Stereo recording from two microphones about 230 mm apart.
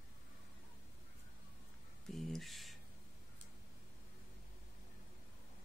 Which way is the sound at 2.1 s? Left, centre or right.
Centre.